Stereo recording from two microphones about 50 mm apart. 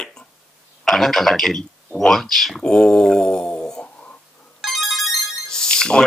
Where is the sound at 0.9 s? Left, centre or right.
Centre.